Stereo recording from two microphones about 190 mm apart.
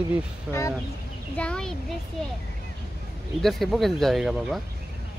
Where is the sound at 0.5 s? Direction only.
15° left (ahead or behind).